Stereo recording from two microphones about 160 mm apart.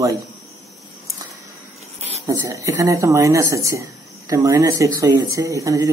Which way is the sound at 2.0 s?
40° right (ahead or behind).